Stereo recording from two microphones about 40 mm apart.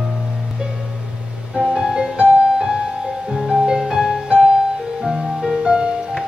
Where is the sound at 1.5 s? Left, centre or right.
Right.